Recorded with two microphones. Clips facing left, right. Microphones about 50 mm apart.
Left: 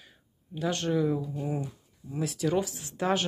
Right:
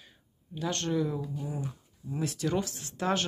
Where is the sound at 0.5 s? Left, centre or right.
Centre.